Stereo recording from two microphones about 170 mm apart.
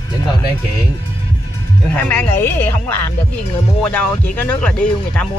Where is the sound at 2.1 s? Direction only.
10° left (ahead or behind).